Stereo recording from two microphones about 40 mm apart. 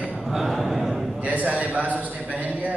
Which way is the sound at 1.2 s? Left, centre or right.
Right.